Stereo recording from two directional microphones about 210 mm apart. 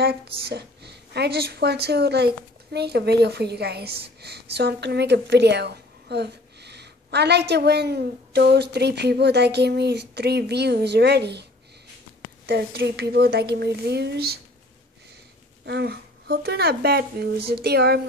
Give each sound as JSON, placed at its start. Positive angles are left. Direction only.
{"t": 0.5, "sound": "speech", "side_deg": -50}
{"t": 12.4, "sound": "speech", "side_deg": -50}
{"t": 15.6, "sound": "speech", "side_deg": -50}